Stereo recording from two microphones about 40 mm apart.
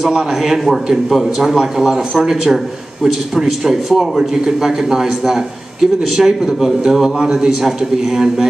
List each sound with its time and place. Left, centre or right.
0.1 s a man's voice: centre